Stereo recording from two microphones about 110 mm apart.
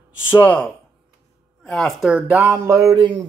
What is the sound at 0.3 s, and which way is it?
Speech, 20° left (ahead or behind).